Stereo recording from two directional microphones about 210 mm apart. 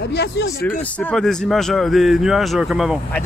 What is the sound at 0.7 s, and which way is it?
Speech, 5° left (ahead or behind).